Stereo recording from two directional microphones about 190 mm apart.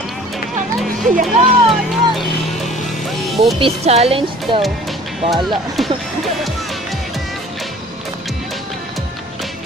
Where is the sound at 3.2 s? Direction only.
Centre (ahead or behind).